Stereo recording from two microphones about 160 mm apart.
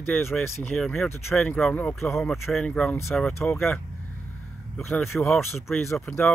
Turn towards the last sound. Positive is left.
turn(degrees=10)  # may be behind; listen again after turning